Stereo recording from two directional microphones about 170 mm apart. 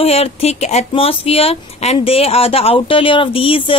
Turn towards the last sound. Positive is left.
turn(degrees=30)  # may be behind; listen again after turning